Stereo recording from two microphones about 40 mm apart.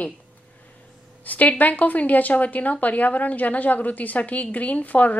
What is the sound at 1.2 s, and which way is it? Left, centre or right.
A woman's voice, left.